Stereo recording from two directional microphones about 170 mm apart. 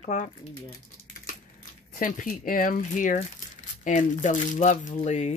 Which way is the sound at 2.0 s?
55° left (ahead or behind).